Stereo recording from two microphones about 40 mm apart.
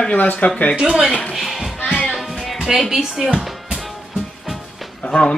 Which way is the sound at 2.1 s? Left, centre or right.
Centre.